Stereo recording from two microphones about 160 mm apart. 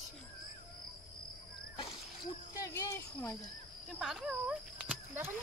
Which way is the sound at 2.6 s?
20° left (ahead or behind).